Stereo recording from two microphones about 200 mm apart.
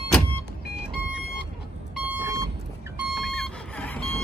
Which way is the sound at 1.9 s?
10° right (ahead or behind).